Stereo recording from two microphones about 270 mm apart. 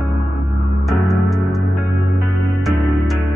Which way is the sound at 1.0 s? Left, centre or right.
Centre.